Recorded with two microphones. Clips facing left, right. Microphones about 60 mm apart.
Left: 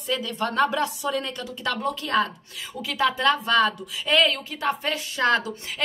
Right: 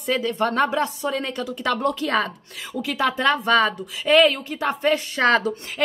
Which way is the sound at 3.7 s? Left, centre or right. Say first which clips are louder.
Right 5 dB; right.